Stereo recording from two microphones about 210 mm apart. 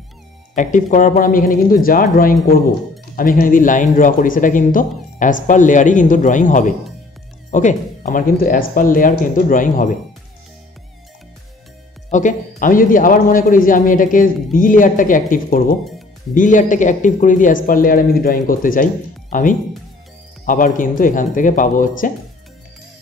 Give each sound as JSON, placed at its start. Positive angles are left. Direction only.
{"t": 0.6, "sound": "speech", "side_deg": 35}
{"t": 12.1, "sound": "speech", "side_deg": 35}